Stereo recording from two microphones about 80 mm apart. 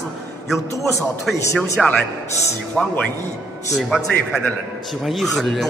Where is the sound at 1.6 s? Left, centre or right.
Centre.